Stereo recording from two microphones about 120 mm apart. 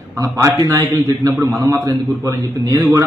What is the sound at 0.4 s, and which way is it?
A man's voice, 30° right (ahead or behind).